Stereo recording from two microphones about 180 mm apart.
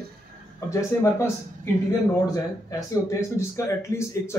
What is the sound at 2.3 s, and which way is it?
A man's voice, 20° left (ahead or behind).